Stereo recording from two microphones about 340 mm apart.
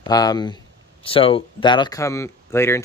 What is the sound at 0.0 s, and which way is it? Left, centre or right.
Speech, centre.